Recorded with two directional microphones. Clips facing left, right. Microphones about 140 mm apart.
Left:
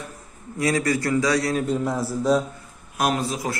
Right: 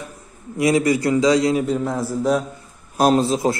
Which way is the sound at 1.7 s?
Centre (ahead or behind).